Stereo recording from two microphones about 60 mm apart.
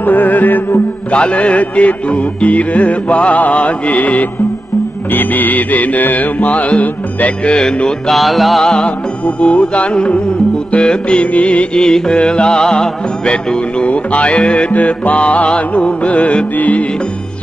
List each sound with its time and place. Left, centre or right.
0.0 s music: left
1.1 s music: left
7.5 s music: centre
8.1 s music: centre
8.6 s music: centre